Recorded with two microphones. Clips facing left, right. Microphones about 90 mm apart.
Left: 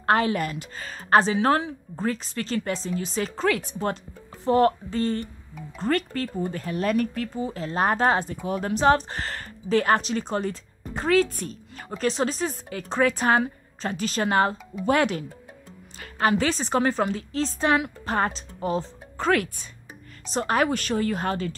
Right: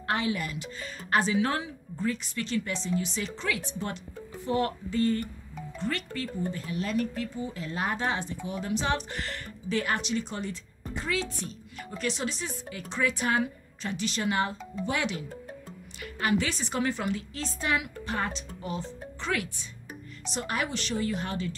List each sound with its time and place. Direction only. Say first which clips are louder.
0.0 s a woman's voice: left 7 dB; 45° left (ahead or behind)
4.5 s a woman's voice: left 9 dB; 40° left (ahead or behind); by 7.2 s 55° left (ahead or behind)
7.3 s a woman's voice: left 7 dB; 35° left (ahead or behind)